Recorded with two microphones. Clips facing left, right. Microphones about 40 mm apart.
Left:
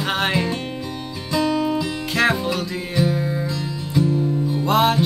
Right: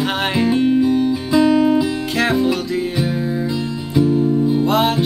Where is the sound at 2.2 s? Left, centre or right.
Centre.